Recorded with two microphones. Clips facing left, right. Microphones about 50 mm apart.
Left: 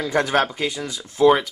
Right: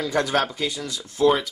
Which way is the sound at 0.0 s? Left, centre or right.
Left.